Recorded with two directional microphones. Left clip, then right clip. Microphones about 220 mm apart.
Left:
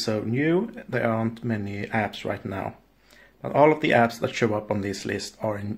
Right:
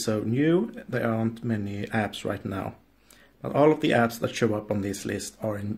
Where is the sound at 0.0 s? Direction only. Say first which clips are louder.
Even; 15° right (ahead or behind).